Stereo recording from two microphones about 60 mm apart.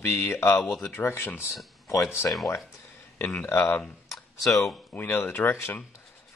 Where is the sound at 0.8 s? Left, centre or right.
Left.